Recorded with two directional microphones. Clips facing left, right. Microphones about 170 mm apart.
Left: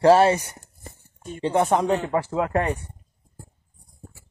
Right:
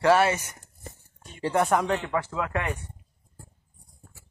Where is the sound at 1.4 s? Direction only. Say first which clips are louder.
Left 3 dB; 20° left (ahead or behind).